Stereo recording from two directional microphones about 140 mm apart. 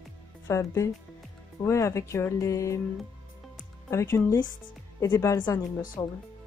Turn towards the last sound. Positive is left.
turn(degrees=20)  # may be behind; listen again after turning